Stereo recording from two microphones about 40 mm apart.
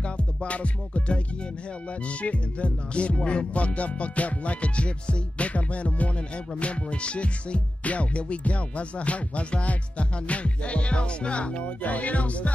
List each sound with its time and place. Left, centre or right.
0.0 s music: left